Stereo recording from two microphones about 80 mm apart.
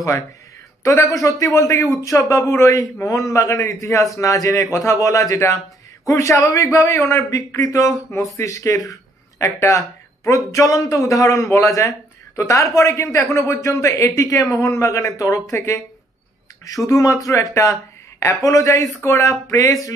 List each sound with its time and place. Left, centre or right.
0.8 s speech: left
16.6 s speech: left